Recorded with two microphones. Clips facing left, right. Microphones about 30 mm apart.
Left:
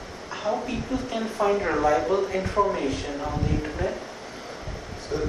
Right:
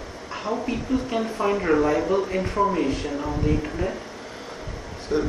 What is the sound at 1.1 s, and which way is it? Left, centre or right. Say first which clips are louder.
Speech: left 3 dB; centre.